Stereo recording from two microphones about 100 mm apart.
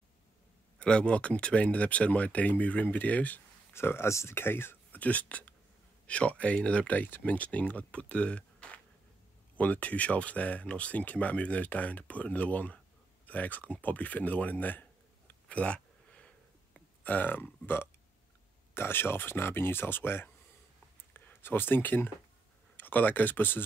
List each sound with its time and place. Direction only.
0.7 s speech: 10° left (ahead or behind)
3.7 s speech: 25° left (ahead or behind)